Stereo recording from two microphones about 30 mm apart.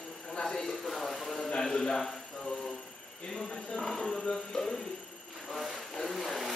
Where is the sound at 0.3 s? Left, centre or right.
Centre.